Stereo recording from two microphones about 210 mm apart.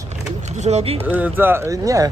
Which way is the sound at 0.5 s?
30° right (ahead or behind).